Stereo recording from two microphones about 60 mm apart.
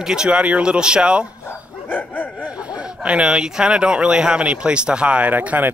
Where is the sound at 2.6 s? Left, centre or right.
Centre.